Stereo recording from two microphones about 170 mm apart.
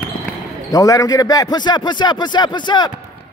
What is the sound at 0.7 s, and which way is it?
A man's voice, 20° left (ahead or behind).